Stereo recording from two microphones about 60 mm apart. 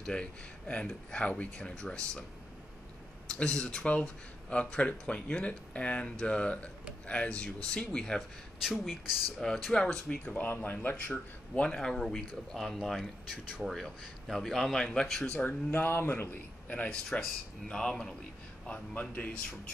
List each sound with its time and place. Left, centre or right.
0.0 s speech: centre
3.3 s speech: centre
8.6 s speech: centre
9.4 s speech: centre
10.1 s speech: left
11.5 s speech: centre
14.3 s speech: centre
15.3 s speech: left; by 18.1 s centre
18.7 s speech: left